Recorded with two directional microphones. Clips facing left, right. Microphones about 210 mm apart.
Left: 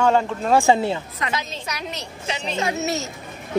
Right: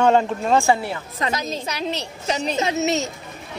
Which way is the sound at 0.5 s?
20° left (ahead or behind).